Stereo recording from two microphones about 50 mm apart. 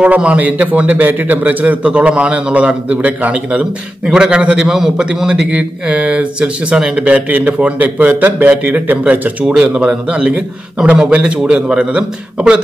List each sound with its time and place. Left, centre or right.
0.0 s a man's voice: right
9.5 s a man's voice: centre